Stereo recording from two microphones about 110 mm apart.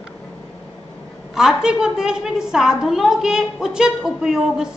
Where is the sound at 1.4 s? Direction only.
5° right (ahead or behind).